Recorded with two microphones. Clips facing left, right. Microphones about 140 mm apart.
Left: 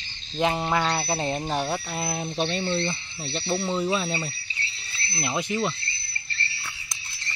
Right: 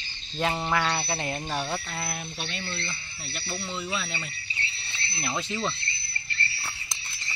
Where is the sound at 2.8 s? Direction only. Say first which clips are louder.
Left 9 dB; 25° left (ahead or behind).